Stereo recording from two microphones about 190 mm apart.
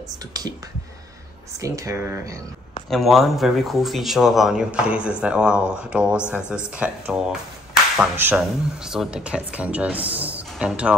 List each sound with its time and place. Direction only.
0.3 s speech: 20° right (ahead or behind)
1.6 s speech: 15° right (ahead or behind)
2.9 s speech: centre (ahead or behind)